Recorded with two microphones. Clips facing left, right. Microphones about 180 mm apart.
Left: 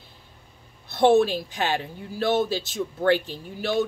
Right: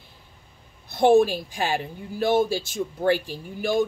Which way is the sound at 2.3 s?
50° right (ahead or behind).